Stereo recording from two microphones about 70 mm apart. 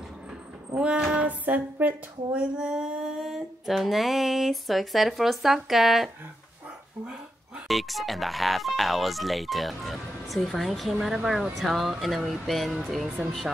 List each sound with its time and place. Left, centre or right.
0.7 s speech: centre
2.6 s speech: centre
7.6 s speech: centre